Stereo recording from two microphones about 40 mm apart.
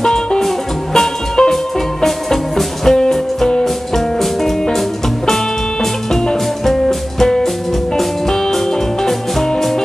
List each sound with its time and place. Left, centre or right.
0.0 s music: centre
6.6 s music: centre
9.0 s music: centre